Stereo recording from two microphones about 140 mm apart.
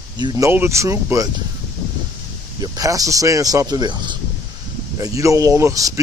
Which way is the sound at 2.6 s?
25° right (ahead or behind).